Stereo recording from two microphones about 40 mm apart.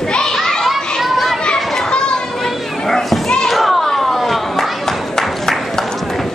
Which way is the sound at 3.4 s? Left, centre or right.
Centre.